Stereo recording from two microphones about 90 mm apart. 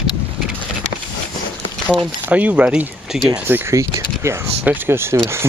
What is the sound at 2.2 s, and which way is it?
Speech, 15° right (ahead or behind).